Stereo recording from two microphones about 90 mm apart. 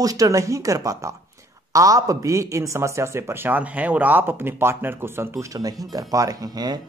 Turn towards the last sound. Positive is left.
turn(degrees=-45)  # may be behind; listen again after turning